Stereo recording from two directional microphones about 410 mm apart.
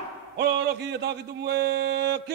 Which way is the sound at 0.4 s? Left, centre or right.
Right.